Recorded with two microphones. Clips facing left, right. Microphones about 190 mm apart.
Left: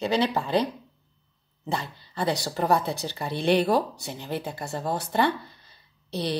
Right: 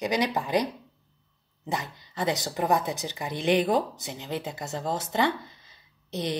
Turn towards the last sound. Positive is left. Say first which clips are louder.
# left 2 dB
turn(degrees=-20)  # may be behind; listen again after turning